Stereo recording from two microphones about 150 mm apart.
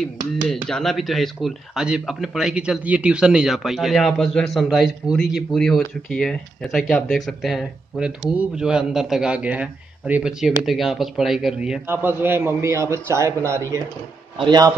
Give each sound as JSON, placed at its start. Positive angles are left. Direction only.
{"t": 0.5, "sound": "a man's voice", "side_deg": 5}
{"t": 14.4, "sound": "a man's voice", "side_deg": -25}